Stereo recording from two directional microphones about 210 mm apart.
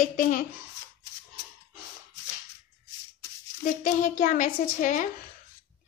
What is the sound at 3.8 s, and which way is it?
A woman's voice, 35° left (ahead or behind).